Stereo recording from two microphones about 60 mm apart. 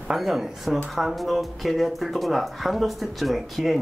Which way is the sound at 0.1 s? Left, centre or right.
Centre.